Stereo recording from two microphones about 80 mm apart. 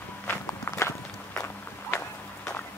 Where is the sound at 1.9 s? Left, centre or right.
Left.